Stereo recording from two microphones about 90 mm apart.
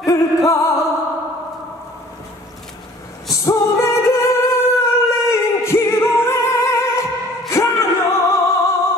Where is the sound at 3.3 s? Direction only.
35° left (ahead or behind).